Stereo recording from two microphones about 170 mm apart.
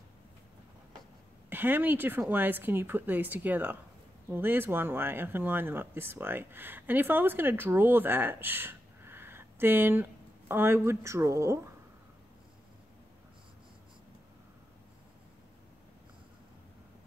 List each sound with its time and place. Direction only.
1.5 s speech: 10° right (ahead or behind)